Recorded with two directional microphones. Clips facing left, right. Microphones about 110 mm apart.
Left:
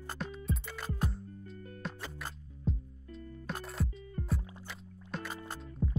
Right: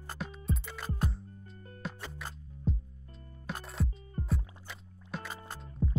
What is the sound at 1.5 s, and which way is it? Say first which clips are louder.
Music: left 4 dB; 35° right (ahead or behind).